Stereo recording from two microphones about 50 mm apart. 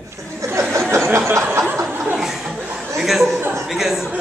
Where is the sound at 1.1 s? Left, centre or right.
Right.